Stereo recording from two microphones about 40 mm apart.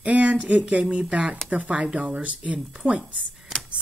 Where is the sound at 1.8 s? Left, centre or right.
Right.